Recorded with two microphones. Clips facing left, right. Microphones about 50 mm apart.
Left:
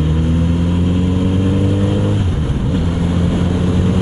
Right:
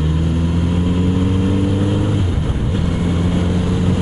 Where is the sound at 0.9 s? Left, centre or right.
Centre.